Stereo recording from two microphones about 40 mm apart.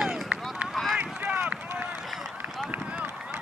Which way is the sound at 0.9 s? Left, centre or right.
Right.